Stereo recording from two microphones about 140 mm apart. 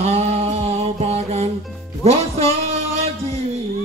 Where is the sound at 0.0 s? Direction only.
50° right (ahead or behind).